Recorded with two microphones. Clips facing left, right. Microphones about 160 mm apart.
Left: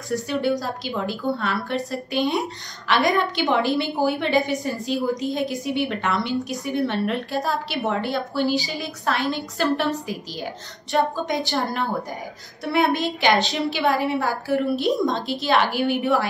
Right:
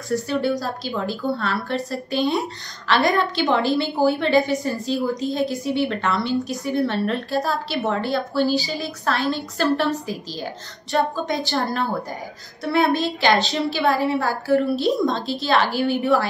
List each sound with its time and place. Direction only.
0.1 s a woman's voice: 20° left (ahead or behind)